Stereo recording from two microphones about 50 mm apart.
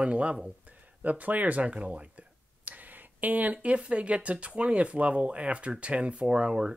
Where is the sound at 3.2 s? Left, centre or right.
Right.